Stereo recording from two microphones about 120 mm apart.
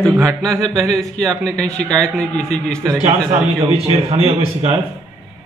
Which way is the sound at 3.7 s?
60° right (ahead or behind).